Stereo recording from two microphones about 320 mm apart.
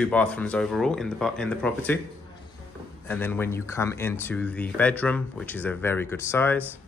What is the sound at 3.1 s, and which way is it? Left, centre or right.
Speech, centre.